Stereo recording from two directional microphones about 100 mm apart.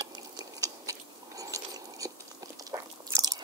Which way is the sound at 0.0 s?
35° right (ahead or behind).